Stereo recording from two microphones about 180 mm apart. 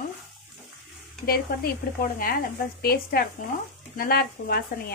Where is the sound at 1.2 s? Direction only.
60° left (ahead or behind).